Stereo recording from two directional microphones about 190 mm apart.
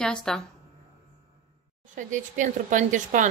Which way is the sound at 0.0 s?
5° left (ahead or behind).